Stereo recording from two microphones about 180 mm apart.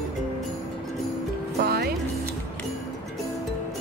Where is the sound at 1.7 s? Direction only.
60° right (ahead or behind).